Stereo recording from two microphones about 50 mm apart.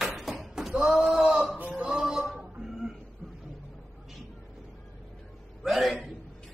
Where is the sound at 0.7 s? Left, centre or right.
Centre.